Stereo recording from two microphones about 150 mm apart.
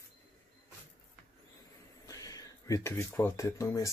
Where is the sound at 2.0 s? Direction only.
25° left (ahead or behind).